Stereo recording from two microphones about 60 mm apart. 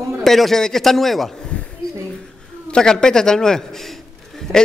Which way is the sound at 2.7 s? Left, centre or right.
Centre.